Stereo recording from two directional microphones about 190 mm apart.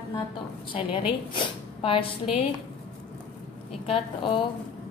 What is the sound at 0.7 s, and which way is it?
Speech, 25° left (ahead or behind).